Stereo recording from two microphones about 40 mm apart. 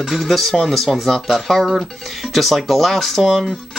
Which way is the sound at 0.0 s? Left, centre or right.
Centre.